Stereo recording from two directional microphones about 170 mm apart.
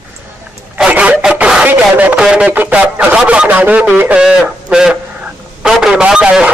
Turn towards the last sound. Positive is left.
turn(degrees=-5)  # may be behind; listen again after turning